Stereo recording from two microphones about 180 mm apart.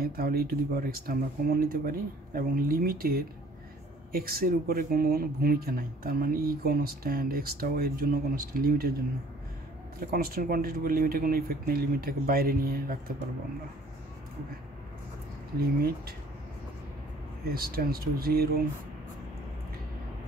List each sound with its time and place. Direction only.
0.0 s speech: 55° right (ahead or behind)
10.1 s speech: 55° right (ahead or behind)
15.6 s speech: 60° right (ahead or behind)
17.5 s speech: 55° right (ahead or behind)